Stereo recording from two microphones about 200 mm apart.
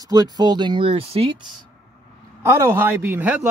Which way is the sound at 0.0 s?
20° right (ahead or behind).